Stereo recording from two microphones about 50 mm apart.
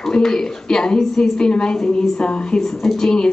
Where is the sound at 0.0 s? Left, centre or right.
Centre.